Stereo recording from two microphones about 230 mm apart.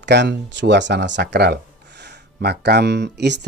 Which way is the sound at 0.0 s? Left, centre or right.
Right.